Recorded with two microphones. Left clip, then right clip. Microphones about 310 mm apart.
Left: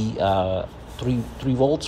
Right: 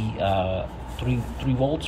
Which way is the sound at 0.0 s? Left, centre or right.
Centre.